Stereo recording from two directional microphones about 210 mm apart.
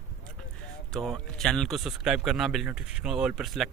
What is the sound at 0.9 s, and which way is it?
Speech, centre (ahead or behind).